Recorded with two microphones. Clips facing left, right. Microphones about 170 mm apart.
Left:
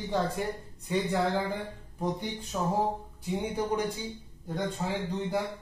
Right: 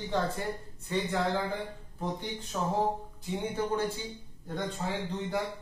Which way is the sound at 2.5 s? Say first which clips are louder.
Left 1 dB; 10° left (ahead or behind).